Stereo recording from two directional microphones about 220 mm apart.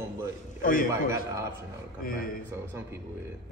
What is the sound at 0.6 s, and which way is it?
Speech, 40° left (ahead or behind).